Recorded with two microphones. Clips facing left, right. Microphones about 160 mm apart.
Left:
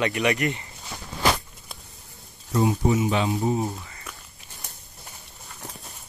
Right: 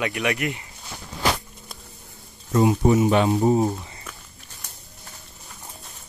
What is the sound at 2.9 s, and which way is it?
Speech, 55° right (ahead or behind).